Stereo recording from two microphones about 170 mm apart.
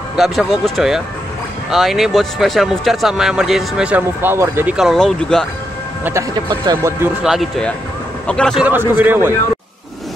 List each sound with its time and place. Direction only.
0.1 s speech: centre (ahead or behind)
4.7 s speech: centre (ahead or behind)
6.3 s speech: 25° right (ahead or behind)
7.2 s speech: centre (ahead or behind)
8.6 s a man's voice: 10° right (ahead or behind)